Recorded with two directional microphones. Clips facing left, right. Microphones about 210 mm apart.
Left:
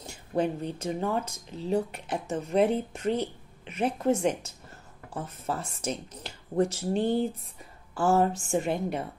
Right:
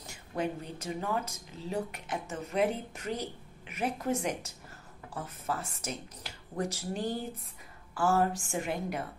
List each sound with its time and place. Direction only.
0.0 s speech: 25° left (ahead or behind)